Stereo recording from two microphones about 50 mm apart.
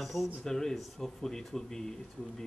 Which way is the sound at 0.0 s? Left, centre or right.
Centre.